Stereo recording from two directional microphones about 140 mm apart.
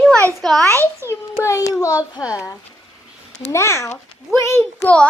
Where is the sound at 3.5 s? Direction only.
20° left (ahead or behind).